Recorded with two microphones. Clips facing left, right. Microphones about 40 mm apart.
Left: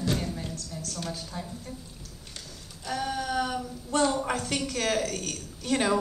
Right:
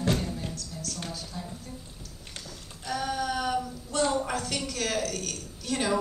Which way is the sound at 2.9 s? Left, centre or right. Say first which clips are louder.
Even; centre.